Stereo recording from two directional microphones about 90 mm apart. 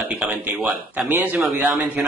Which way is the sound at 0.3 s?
15° right (ahead or behind).